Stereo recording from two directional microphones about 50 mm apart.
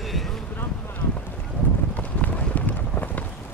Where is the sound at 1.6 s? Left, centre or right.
Left.